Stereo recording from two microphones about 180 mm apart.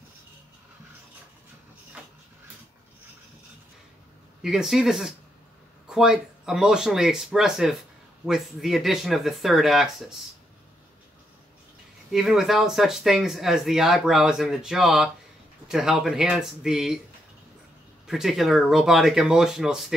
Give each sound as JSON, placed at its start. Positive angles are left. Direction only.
{"t": 4.4, "sound": "speech", "side_deg": 0}
{"t": 12.1, "sound": "speech", "side_deg": 0}
{"t": 18.0, "sound": "speech", "side_deg": 0}